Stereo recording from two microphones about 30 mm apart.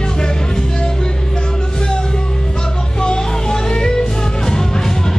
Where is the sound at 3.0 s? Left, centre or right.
Left.